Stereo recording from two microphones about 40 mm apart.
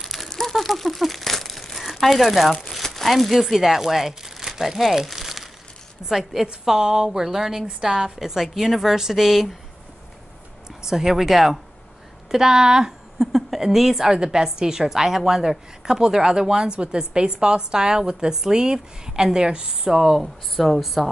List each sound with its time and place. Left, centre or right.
0.0 s a sound: centre
0.3 s crumpling: centre
2.5 s speech: centre
10.8 s speech: centre
12.3 s speech: centre
13.2 s a woman's voice: centre